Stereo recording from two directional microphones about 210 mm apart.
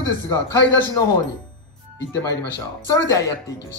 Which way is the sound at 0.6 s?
60° left (ahead or behind).